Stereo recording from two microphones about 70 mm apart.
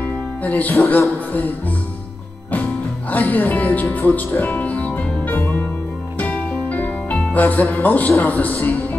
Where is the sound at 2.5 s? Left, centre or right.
Left.